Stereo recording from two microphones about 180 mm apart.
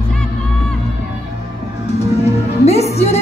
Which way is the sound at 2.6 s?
35° left (ahead or behind).